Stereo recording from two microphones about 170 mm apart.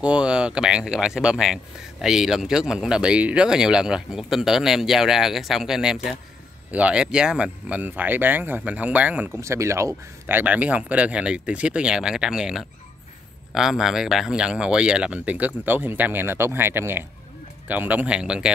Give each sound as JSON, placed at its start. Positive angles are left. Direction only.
{"t": 0.0, "sound": "speech", "side_deg": -5}